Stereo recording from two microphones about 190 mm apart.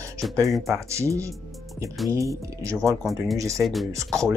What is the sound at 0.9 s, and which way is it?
Speech, 15° right (ahead or behind).